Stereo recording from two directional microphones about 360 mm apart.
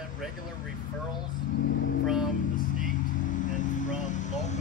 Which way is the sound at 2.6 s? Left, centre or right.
Left.